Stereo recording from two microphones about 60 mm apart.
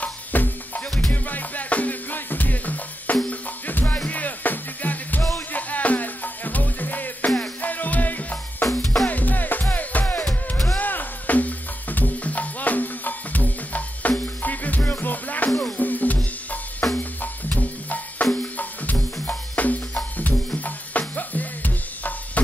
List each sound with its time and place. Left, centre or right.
0.0 s drum: left
1.1 s music: left